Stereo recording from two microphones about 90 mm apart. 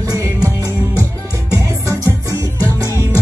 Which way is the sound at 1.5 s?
40° right (ahead or behind).